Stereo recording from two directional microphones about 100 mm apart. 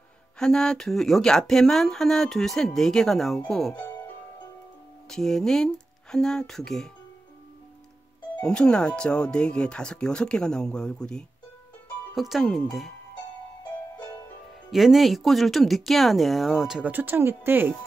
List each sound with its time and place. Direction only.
0.4 s speech: 5° left (ahead or behind)
5.1 s speech: 5° left (ahead or behind)
8.4 s speech: 10° left (ahead or behind)
14.7 s speech: centre (ahead or behind)
16.8 s speech: 20° right (ahead or behind)